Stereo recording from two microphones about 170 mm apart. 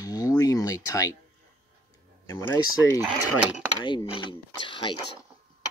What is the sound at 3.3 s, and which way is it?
Speech, 5° right (ahead or behind).